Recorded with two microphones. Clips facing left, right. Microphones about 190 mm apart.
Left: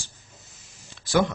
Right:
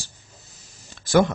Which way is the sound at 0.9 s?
45° right (ahead or behind).